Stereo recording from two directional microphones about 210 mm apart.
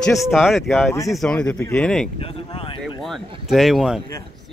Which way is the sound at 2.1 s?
25° left (ahead or behind).